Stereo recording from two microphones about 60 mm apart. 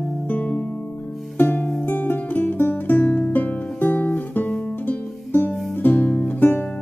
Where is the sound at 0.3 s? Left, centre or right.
Left.